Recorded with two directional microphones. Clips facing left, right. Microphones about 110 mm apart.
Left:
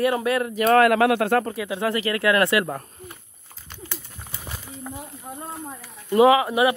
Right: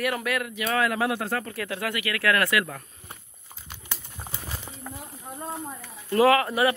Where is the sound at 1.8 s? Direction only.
30° left (ahead or behind).